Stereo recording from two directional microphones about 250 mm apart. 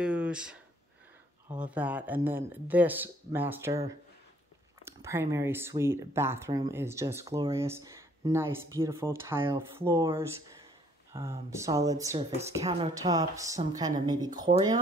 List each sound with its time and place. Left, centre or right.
0.0 s speech: centre
12.4 s speech: right
12.9 s speech: centre